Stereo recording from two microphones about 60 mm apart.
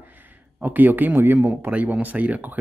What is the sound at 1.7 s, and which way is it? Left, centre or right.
Speech, right.